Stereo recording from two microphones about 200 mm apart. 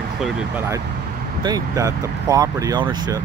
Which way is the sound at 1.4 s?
15° right (ahead or behind).